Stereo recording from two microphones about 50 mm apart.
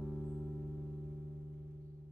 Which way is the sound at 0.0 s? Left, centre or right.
Centre.